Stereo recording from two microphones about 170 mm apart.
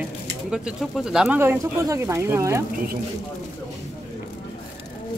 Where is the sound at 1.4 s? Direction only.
15° right (ahead or behind).